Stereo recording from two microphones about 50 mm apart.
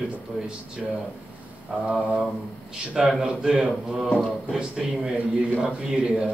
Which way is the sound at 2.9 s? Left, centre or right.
Centre.